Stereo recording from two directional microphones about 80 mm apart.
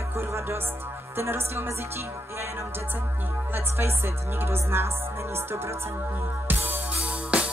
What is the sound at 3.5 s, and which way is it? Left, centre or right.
Speech, right.